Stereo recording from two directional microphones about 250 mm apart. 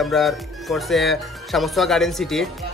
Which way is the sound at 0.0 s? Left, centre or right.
Centre.